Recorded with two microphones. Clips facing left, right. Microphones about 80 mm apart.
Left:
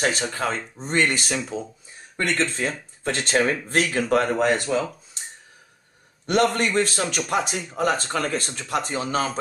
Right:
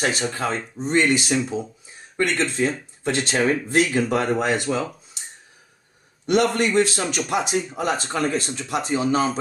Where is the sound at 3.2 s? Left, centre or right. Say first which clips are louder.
Left 1 dB; left.